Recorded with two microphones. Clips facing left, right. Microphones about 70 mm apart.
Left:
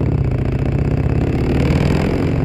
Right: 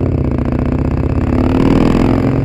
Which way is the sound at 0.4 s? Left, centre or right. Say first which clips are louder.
Right 5 dB; right.